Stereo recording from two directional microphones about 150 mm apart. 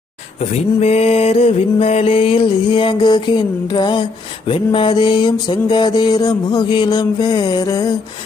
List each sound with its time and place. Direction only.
0.4 s music: 45° left (ahead or behind); by 7.9 s 25° left (ahead or behind)